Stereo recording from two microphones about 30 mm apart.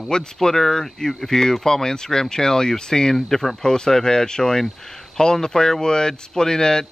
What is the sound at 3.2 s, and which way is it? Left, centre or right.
Speech, centre.